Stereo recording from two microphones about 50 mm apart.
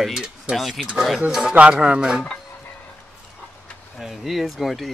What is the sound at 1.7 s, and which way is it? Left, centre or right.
Speech, centre.